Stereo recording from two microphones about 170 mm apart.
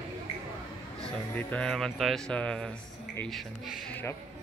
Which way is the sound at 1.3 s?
5° left (ahead or behind).